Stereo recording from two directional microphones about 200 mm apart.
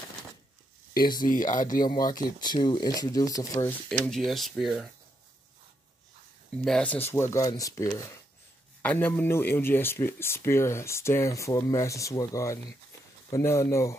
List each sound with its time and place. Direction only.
1.2 s speech: 40° left (ahead or behind)
1.8 s speech: 20° left (ahead or behind)
3.6 s speech: centre (ahead or behind)
6.6 s speech: 5° left (ahead or behind)